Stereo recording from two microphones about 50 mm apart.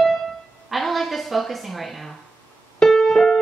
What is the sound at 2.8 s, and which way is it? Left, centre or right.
Keyboard, centre.